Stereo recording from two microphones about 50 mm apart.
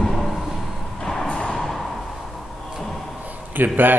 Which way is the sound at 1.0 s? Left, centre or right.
Centre.